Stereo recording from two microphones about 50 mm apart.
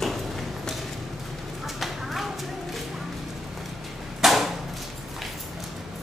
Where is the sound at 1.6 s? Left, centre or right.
Centre.